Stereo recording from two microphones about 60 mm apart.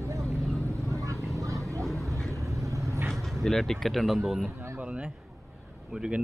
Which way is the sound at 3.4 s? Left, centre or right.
Centre.